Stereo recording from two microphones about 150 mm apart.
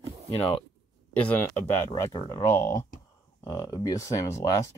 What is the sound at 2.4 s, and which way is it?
Speech, 20° left (ahead or behind).